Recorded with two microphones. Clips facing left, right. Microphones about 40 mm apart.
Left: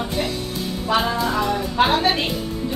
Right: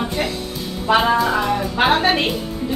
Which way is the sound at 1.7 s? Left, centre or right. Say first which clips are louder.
Right 2 dB; right.